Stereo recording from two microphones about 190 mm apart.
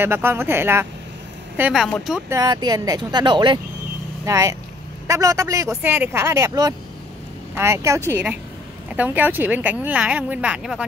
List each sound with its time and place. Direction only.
0.0 s speech: 10° right (ahead or behind)
1.6 s speech: centre (ahead or behind)
2.2 s speech: 20° right (ahead or behind); by 10.9 s 5° right (ahead or behind)